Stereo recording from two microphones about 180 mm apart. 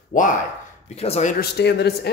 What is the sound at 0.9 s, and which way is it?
Speech, 35° left (ahead or behind).